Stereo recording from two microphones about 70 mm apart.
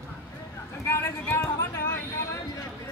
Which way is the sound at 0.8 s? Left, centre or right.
Left.